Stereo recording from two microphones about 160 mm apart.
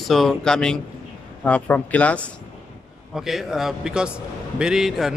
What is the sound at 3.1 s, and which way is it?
Speech, centre (ahead or behind).